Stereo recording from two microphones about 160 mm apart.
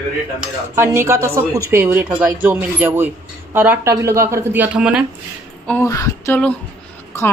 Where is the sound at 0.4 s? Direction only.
15° right (ahead or behind).